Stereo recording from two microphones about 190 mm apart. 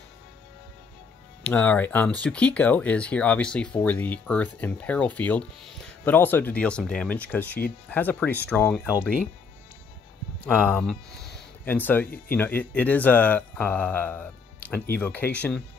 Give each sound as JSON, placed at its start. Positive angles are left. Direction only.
{"t": 1.4, "sound": "speech", "side_deg": 10}
{"t": 10.4, "sound": "speech", "side_deg": -5}
{"t": 10.7, "sound": "speech", "side_deg": 5}